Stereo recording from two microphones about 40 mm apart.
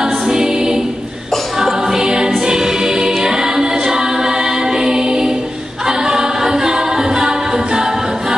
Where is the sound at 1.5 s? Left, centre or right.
Centre.